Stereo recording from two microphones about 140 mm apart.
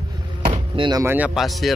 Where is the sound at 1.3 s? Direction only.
Centre (ahead or behind).